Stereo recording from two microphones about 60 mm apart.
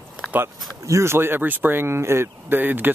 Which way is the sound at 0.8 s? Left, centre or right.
Right.